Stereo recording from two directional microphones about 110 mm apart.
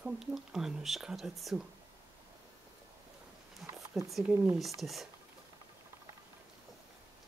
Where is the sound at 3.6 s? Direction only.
5° right (ahead or behind).